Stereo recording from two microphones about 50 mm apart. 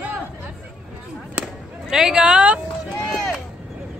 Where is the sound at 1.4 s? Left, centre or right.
Right.